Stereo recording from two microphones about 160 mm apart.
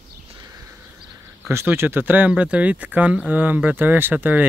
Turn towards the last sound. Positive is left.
turn(degrees=-10)  # may be behind; listen again after turning